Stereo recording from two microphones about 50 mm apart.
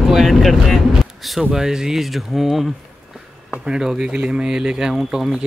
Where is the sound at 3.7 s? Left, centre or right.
Centre.